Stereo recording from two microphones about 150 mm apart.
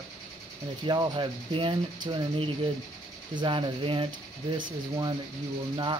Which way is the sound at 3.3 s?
35° right (ahead or behind).